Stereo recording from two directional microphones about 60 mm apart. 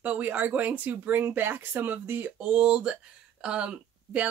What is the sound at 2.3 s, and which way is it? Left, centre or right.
Speech, right.